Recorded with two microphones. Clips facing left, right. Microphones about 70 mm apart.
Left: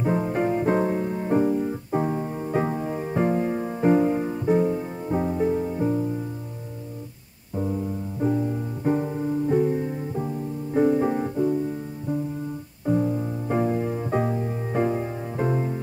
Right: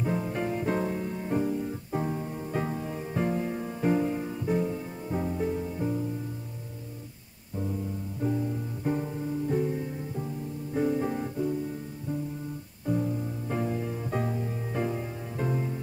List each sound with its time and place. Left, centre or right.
0.0 s music: left
7.5 s music: left
12.8 s music: left